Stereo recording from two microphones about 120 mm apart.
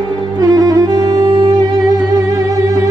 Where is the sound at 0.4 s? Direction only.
30° right (ahead or behind).